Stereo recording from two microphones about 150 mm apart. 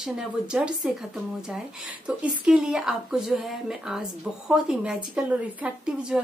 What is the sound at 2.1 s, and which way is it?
A woman's voice, 10° right (ahead or behind).